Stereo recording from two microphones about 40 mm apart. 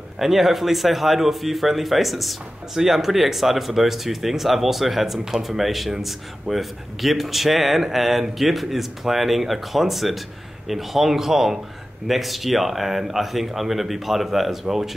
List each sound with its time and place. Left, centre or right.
0.2 s a man's voice: centre